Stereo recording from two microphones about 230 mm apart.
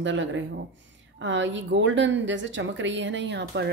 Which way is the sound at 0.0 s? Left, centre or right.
Right.